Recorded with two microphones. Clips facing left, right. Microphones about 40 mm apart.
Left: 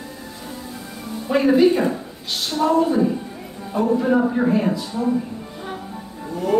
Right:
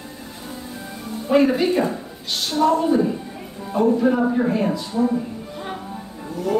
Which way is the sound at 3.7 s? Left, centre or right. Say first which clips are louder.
Even; centre.